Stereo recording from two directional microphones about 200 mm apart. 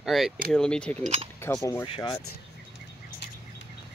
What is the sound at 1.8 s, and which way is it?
Speech, 25° left (ahead or behind).